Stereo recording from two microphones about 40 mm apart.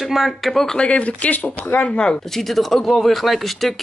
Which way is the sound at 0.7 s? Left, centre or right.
Left.